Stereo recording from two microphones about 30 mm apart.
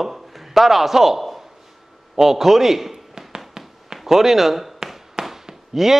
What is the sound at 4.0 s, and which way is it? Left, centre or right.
Speech, centre.